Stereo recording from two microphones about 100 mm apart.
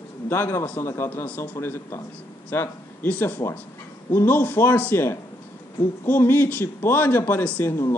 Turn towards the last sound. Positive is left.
turn(degrees=20)  # may be behind; listen again after turning